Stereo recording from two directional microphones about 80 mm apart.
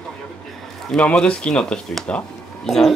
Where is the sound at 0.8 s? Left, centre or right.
Centre.